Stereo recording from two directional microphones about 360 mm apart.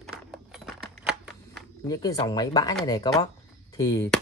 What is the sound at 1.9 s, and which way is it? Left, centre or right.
Speech, centre.